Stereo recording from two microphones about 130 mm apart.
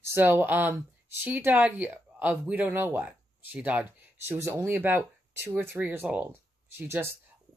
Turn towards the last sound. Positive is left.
turn(degrees=-15)  # may be behind; listen again after turning